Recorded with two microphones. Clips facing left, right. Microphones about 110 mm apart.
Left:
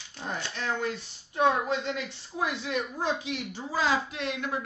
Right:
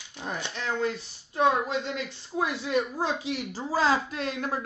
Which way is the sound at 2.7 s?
30° right (ahead or behind).